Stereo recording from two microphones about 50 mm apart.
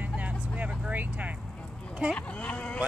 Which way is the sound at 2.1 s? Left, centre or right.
Left.